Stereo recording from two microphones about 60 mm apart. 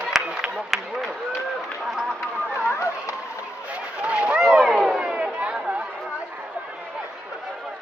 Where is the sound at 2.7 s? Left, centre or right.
Left.